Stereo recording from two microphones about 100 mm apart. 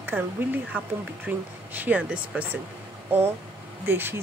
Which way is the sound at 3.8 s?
20° right (ahead or behind).